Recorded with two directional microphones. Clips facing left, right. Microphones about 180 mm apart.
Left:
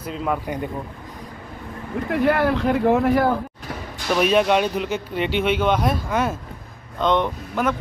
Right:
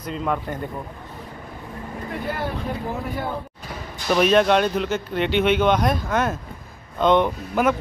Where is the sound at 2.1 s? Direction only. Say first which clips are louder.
Left 10 dB; 75° left (ahead or behind); by 3.4 s 90° left.